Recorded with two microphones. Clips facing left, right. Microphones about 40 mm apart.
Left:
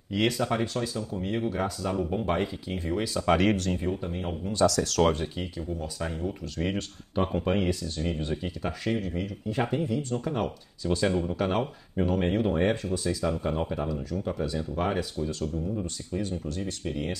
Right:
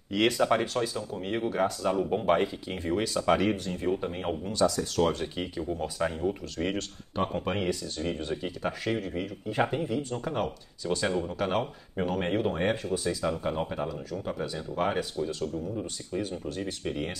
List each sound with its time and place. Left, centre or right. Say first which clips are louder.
0.4 s speech: right 2 dB; centre
3.3 s speech: left 3 dB; left
4.0 s speech: right 2 dB; centre
4.6 s speech: left 4 dB; left
5.7 s speech: right 6 dB; right
6.1 s speech: right 2 dB; centre